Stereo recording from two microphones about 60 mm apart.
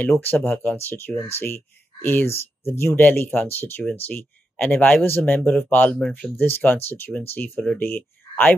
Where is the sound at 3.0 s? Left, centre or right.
Left.